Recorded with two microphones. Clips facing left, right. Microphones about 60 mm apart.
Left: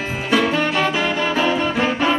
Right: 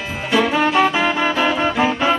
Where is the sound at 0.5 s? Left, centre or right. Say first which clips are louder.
Right 3 dB; centre.